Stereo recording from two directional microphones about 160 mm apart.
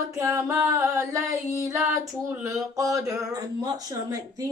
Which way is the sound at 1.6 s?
15° right (ahead or behind).